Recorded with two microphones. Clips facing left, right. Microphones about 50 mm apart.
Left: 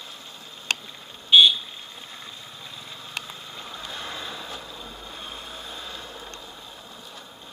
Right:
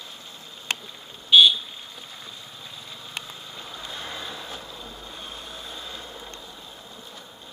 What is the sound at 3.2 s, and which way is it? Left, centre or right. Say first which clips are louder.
Vehicle: left 1 dB; centre.